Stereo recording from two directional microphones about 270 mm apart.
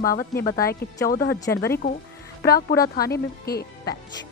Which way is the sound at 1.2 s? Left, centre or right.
Centre.